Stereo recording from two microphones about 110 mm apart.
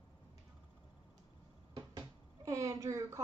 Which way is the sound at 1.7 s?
40° right (ahead or behind).